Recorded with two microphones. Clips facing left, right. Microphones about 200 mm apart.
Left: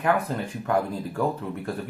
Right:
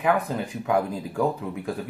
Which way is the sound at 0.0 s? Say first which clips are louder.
Right 1 dB; 5° right (ahead or behind).